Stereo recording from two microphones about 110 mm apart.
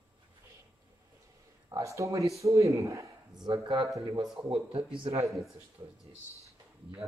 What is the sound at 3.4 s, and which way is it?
Speech, 40° right (ahead or behind).